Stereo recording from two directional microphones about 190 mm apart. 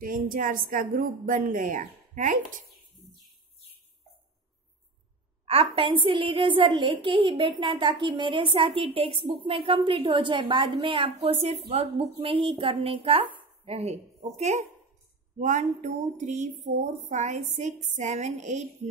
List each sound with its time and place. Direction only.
0.0 s a woman's voice: 45° right (ahead or behind)
5.4 s a woman's voice: 30° right (ahead or behind)